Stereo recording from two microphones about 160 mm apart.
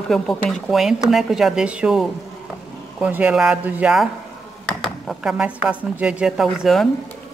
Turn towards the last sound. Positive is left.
turn(degrees=0)  # may be behind; listen again after turning